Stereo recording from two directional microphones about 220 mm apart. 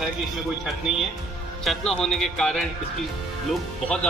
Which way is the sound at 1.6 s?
Centre (ahead or behind).